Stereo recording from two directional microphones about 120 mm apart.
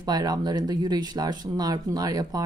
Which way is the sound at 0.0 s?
35° right (ahead or behind).